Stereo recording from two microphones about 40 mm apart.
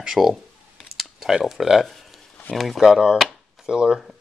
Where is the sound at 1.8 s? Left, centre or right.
Centre.